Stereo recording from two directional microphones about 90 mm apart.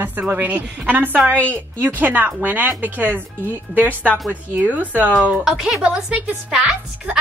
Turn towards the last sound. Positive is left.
turn(degrees=-10)  # may be behind; listen again after turning